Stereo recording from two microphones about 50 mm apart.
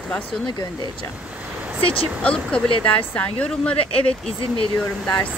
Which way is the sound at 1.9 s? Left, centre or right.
Left.